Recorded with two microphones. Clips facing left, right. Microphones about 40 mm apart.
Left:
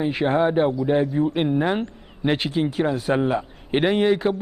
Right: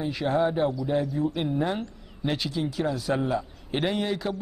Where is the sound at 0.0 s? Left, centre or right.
Left.